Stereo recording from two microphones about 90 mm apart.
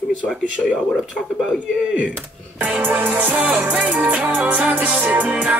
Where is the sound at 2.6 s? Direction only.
20° right (ahead or behind).